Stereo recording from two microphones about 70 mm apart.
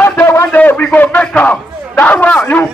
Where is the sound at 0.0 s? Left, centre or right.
Left.